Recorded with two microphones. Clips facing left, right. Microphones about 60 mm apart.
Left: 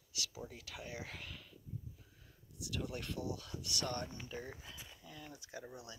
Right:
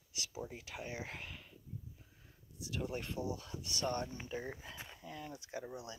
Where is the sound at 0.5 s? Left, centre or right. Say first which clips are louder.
Right 3 dB; right.